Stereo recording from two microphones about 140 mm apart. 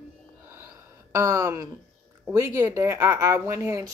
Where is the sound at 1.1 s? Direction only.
25° right (ahead or behind).